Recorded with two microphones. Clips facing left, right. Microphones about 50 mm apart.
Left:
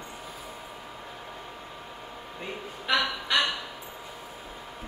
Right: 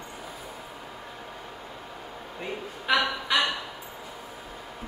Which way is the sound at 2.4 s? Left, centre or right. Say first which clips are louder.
Right 3 dB; centre.